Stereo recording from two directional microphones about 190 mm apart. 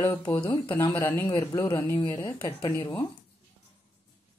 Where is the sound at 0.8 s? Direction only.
15° left (ahead or behind).